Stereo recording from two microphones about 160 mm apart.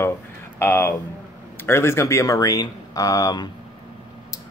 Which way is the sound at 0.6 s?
15° left (ahead or behind).